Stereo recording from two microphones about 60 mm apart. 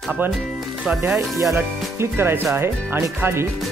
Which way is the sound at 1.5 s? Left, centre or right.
Right.